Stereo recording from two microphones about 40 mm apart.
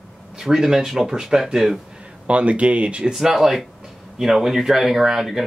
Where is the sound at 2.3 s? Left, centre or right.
Right.